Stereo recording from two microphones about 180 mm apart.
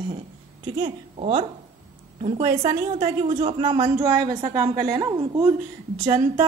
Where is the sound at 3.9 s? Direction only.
20° right (ahead or behind).